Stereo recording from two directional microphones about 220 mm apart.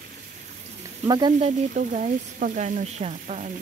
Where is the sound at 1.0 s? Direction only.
20° right (ahead or behind).